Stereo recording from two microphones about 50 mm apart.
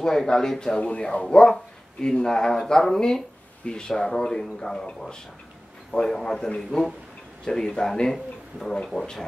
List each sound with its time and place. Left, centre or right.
0.0 s speech: centre
0.7 s speech: left